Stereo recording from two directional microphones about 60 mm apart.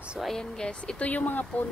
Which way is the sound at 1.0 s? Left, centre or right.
Left.